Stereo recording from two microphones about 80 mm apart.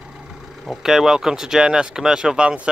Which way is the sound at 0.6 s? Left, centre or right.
Centre.